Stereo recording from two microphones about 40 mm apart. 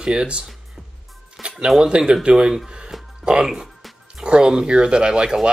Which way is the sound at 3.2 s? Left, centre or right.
Right.